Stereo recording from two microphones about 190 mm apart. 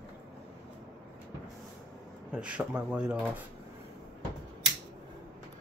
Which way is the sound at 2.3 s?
5° right (ahead or behind).